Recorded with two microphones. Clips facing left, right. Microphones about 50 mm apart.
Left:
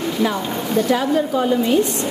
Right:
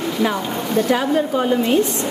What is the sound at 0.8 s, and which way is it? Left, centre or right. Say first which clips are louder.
Speech: even; centre.